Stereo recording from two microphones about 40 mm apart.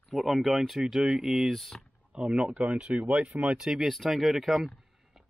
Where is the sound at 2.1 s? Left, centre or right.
Right.